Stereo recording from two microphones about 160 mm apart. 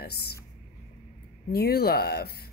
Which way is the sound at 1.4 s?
80° left.